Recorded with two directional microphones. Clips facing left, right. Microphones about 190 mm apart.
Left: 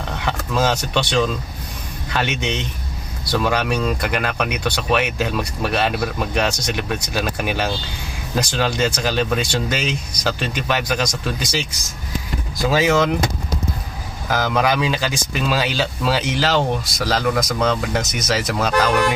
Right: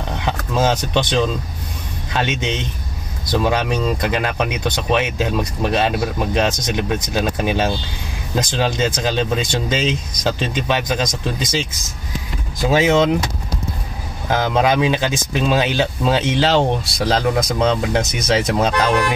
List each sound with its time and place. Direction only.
0.2 s speech: 15° right (ahead or behind)
3.3 s speech: 20° right (ahead or behind)
3.6 s speech: 5° left (ahead or behind)
4.0 s speech: 20° right (ahead or behind)
14.3 s speech: 25° right (ahead or behind)